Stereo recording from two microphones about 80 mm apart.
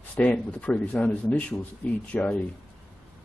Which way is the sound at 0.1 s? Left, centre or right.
Centre.